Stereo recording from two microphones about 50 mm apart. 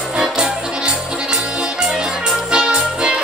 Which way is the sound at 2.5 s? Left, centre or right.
Centre.